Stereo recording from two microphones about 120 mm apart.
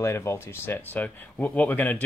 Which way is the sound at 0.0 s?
20° left (ahead or behind).